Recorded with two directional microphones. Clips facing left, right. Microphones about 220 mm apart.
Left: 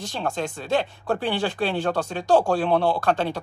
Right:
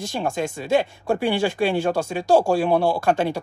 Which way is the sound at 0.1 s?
15° right (ahead or behind).